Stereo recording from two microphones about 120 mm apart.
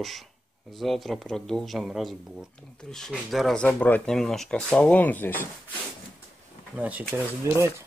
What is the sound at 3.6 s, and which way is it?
Speech, 15° left (ahead or behind).